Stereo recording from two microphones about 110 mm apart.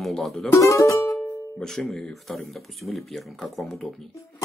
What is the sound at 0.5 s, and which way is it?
Speech, 30° left (ahead or behind).